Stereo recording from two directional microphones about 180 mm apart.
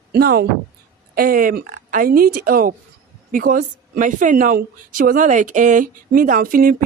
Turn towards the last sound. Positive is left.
turn(degrees=-50)  # may be behind; listen again after turning